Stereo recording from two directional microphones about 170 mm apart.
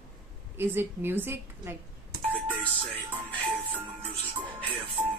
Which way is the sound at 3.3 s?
30° right (ahead or behind).